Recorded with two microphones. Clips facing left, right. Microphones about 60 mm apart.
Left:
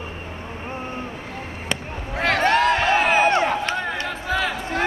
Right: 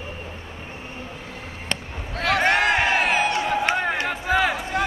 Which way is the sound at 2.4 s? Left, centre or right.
Right.